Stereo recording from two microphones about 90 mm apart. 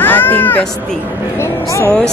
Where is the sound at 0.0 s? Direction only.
20° left (ahead or behind).